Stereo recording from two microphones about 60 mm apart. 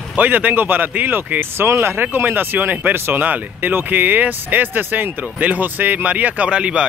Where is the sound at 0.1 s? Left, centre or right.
Right.